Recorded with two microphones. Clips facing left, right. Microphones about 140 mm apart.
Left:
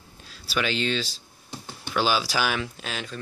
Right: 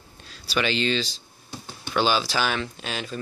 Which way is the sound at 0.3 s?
Centre (ahead or behind).